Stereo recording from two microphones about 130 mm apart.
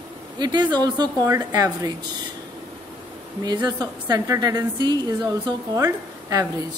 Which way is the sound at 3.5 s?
30° right (ahead or behind).